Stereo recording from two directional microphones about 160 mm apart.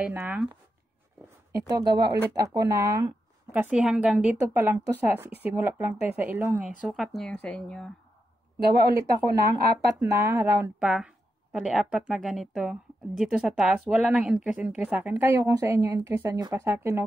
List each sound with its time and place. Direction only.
0.0 s speech: 10° right (ahead or behind)
1.5 s speech: 25° right (ahead or behind)
3.5 s speech: 5° right (ahead or behind)
6.9 s speech: centre (ahead or behind)
8.5 s speech: 75° right (ahead or behind)
8.9 s speech: 25° right (ahead or behind)
10.8 s speech: 5° right (ahead or behind)